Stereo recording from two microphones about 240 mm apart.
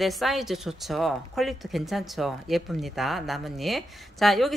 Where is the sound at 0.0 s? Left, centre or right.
Centre.